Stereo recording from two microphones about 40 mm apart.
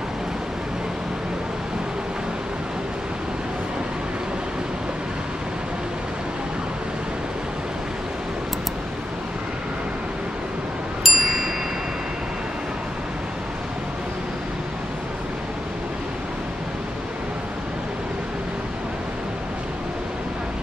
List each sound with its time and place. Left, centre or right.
11.1 s tubular bells: centre